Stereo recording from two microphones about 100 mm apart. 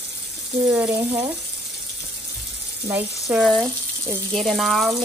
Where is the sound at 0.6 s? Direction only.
15° right (ahead or behind).